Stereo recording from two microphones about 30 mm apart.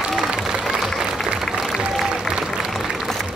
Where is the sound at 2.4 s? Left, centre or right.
Centre.